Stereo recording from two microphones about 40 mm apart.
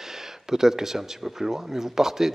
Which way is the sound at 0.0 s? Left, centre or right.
Centre.